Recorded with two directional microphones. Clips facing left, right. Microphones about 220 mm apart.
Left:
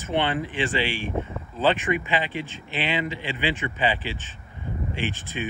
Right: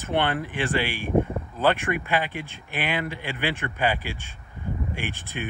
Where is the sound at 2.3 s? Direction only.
15° right (ahead or behind).